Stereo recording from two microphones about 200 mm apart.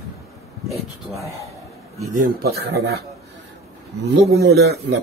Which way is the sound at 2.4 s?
50° right (ahead or behind).